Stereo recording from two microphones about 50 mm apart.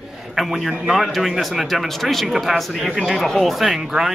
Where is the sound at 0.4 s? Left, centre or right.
Centre.